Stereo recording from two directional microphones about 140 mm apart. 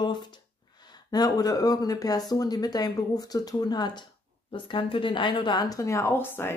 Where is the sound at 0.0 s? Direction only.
35° left (ahead or behind).